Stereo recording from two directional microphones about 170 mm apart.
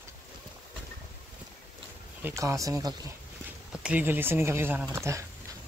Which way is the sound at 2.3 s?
15° right (ahead or behind).